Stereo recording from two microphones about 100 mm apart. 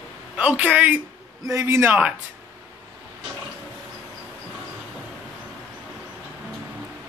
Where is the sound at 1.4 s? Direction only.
30° right (ahead or behind).